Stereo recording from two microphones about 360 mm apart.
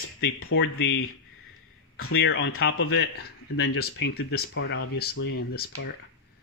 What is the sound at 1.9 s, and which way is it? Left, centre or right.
Speech, left.